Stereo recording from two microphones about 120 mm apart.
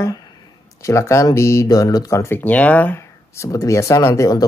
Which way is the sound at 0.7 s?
25° left (ahead or behind).